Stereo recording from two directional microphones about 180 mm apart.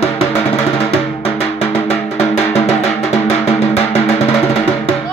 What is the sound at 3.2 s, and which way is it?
Music, 35° left (ahead or behind).